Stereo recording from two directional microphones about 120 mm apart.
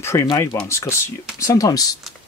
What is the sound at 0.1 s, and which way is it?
Speech, 25° left (ahead or behind).